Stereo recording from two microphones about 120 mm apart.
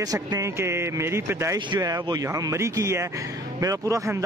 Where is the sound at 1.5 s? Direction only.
30° right (ahead or behind).